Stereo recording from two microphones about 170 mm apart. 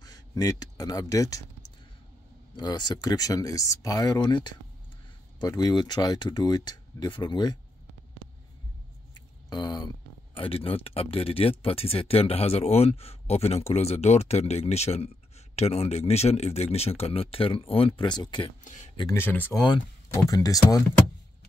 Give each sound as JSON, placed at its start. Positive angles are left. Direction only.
{"t": 0.0, "sound": "speech", "side_deg": 25}
{"t": 2.5, "sound": "speech", "side_deg": 25}
{"t": 9.5, "sound": "speech", "side_deg": 25}
{"t": 19.5, "sound": "speech", "side_deg": 25}